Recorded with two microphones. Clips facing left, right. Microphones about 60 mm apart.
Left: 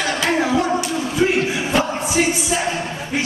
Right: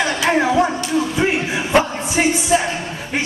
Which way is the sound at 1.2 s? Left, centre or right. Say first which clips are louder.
Left 3 dB; right.